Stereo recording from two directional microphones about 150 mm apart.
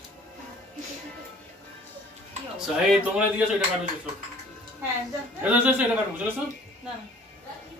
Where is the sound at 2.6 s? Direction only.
5° right (ahead or behind).